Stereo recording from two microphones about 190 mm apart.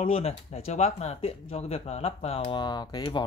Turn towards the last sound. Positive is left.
turn(degrees=25)  # may be behind; listen again after turning